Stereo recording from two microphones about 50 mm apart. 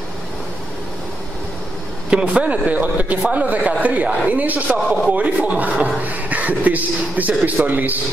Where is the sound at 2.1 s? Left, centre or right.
Right.